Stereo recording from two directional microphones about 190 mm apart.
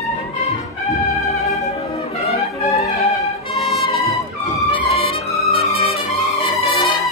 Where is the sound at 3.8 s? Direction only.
30° left (ahead or behind).